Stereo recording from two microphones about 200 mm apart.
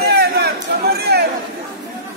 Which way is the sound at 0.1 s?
55° right (ahead or behind).